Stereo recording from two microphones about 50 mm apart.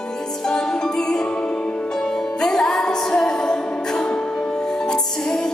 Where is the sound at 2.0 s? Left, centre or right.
Centre.